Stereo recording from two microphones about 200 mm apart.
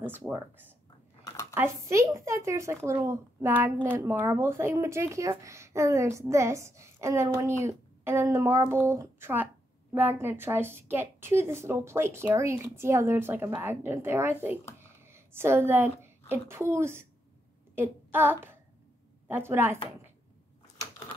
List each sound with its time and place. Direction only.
0.0 s a woman's voice: 15° right (ahead or behind)
1.2 s computer keyboard: 15° left (ahead or behind)
1.5 s a woman's voice: 15° right (ahead or behind)